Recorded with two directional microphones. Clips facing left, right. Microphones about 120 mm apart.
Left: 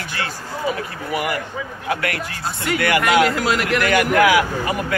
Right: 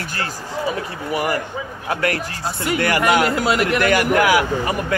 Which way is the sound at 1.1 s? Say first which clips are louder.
Right 2 dB; 35° right (ahead or behind).